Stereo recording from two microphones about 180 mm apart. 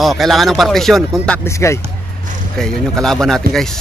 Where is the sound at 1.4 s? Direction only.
15° left (ahead or behind).